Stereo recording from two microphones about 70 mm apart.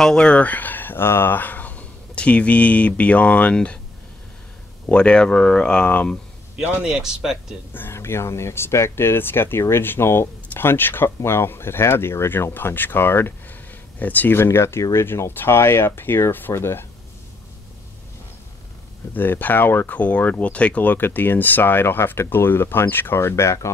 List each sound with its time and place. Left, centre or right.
0.0 s speech: centre
4.8 s speech: centre
6.6 s speech: right
6.9 s speech: centre
7.7 s speech: left
19.1 s speech: left